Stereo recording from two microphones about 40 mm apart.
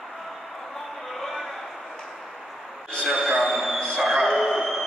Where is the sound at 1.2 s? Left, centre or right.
Centre.